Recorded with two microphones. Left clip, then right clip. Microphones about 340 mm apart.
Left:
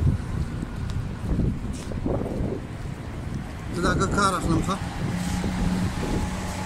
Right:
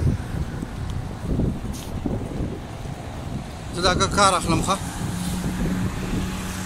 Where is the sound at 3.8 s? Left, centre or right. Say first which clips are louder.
Right 5 dB; centre.